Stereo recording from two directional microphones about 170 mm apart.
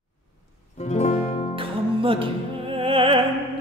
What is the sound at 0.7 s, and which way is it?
Music, 40° left (ahead or behind).